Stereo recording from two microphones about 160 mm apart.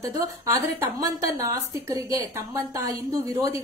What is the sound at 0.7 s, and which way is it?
A woman's voice, 20° right (ahead or behind).